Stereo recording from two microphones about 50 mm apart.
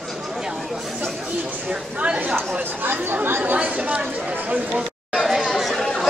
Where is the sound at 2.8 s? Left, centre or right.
Right.